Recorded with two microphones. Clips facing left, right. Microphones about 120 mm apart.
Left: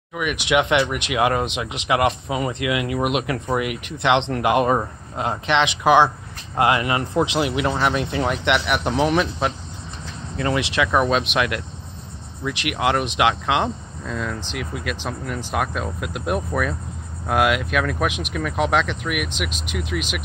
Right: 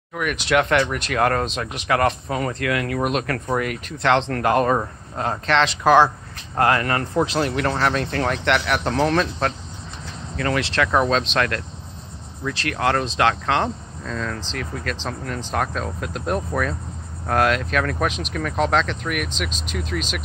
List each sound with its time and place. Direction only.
0.1 s speech: 10° left (ahead or behind)
10.3 s speech: 20° left (ahead or behind)
10.7 s speech: 5° left (ahead or behind)